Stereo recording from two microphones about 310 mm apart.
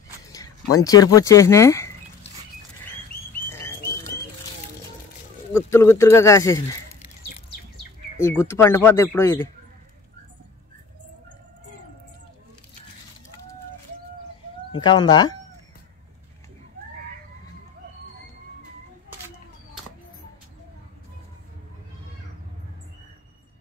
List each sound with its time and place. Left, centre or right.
0.8 s speech: centre
3.4 s frog: centre
5.5 s speech: centre
8.2 s speech: centre
14.7 s speech: centre